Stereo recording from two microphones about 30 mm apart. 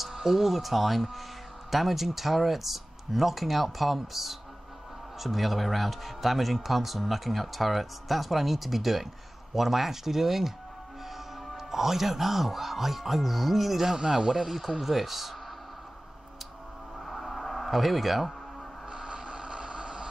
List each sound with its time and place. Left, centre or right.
0.0 s speech: centre
11.5 s speech: centre
13.9 s a man's voice: right
14.3 s speech: centre
17.0 s a sound: centre
19.0 s vehicle: right